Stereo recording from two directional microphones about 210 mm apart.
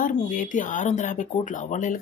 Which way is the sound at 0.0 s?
40° left (ahead or behind).